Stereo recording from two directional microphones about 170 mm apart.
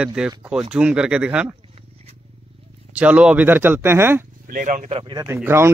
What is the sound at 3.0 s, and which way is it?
Speech, 10° right (ahead or behind).